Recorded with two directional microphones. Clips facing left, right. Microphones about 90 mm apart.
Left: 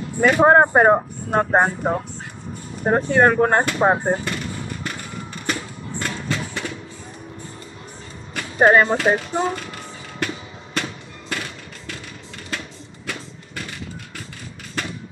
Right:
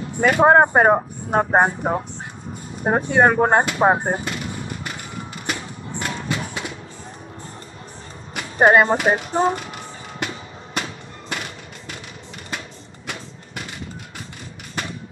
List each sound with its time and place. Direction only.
0.2 s speech: 5° right (ahead or behind)
5.5 s a sound: 15° right (ahead or behind)
8.4 s a sound: 15° right (ahead or behind)
8.9 s speech: 15° right (ahead or behind)
9.6 s fireworks: 15° right (ahead or behind)
12.4 s music: 15° right (ahead or behind)